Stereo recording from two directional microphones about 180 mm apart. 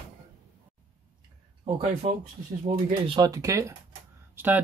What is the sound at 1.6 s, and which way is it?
Speech, 35° right (ahead or behind).